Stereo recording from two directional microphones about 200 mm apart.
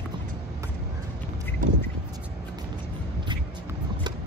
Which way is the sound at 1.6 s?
40° right (ahead or behind).